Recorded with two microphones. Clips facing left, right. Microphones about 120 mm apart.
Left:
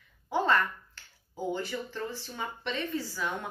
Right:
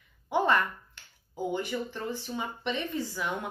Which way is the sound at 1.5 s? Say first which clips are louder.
Right 2 dB; 15° right (ahead or behind).